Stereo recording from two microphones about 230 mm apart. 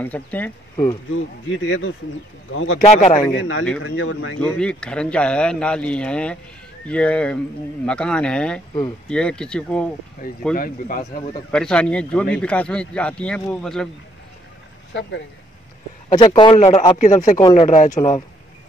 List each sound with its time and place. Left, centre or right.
0.0 s speech: centre
1.1 s speech: left
2.8 s a man's voice: left
3.3 s speech: left
4.4 s speech: centre
10.5 s speech: left
11.5 s speech: centre
15.0 s speech: left
16.3 s a man's voice: left
17.4 s a man's voice: left